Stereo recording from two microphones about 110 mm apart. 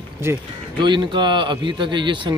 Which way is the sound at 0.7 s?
45° right (ahead or behind).